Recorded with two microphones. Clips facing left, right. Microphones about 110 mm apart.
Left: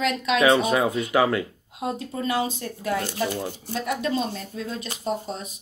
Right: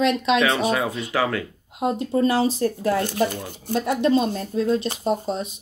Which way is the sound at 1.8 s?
30° right (ahead or behind).